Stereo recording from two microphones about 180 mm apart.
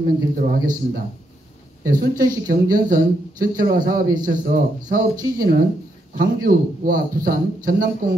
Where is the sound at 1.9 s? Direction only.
50° right (ahead or behind).